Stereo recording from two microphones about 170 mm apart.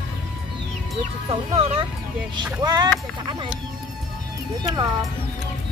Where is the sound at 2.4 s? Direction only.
25° right (ahead or behind).